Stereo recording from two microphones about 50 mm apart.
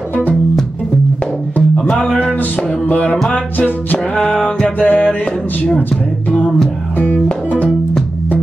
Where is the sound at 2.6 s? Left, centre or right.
Left.